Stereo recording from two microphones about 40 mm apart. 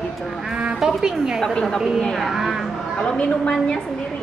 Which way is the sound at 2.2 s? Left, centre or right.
Centre.